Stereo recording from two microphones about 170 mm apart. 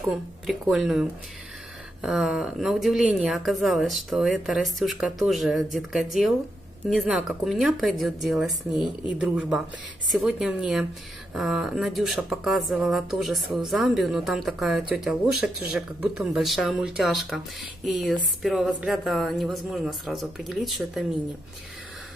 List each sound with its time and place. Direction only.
0.0 s speech: centre (ahead or behind)
8.7 s speech: 25° left (ahead or behind)
9.2 s speech: 5° right (ahead or behind)